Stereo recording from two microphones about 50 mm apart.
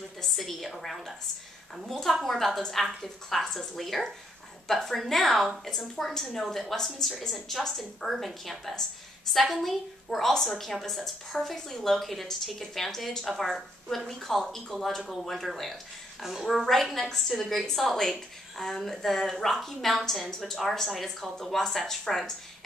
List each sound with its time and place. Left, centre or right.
0.2 s a woman's voice: centre
16.2 s a woman's voice: centre